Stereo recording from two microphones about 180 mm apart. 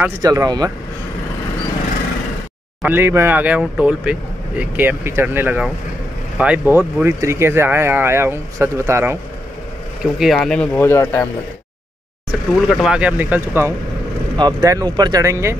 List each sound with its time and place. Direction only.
0.2 s speech: 20° right (ahead or behind)
2.8 s speech: 10° right (ahead or behind)
10.1 s speech: centre (ahead or behind)
12.5 s speech: centre (ahead or behind)
14.3 s speech: 25° right (ahead or behind)